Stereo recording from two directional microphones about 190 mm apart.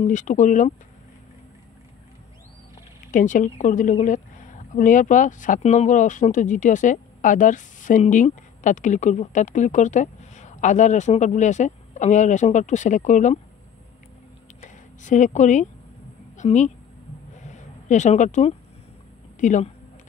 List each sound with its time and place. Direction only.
0.0 s a woman's voice: 40° left (ahead or behind)
3.1 s a woman's voice: 40° left (ahead or behind)
14.6 s a sound: 40° left (ahead or behind)
16.3 s a woman's voice: 40° left (ahead or behind)
17.5 s a sound: 40° left (ahead or behind)
19.4 s a woman's voice: 40° left (ahead or behind)